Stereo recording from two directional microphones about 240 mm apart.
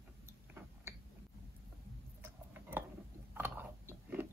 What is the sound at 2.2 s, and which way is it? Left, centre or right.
Tick-tock, centre.